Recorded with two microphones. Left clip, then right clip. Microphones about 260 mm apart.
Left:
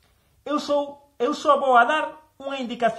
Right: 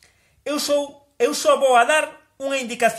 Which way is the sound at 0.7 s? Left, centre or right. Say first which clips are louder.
Right 3 dB; right.